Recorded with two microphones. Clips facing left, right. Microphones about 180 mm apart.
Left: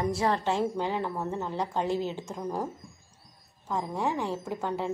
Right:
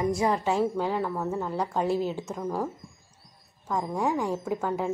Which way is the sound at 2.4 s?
15° left (ahead or behind).